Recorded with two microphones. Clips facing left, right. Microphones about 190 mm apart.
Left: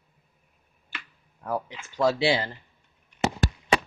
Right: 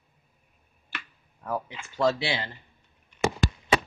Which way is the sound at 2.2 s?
35° left (ahead or behind).